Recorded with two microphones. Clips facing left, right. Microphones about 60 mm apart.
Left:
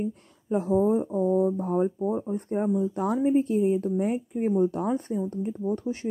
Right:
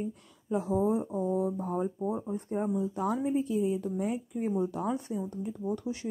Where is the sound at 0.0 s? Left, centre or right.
Left.